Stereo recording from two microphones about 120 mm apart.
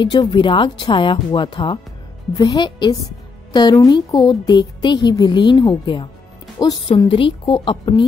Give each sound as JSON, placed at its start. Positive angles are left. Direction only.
{"t": 0.0, "sound": "speech", "side_deg": 35}
{"t": 2.3, "sound": "a woman's voice", "side_deg": 30}
{"t": 7.1, "sound": "speech", "side_deg": 45}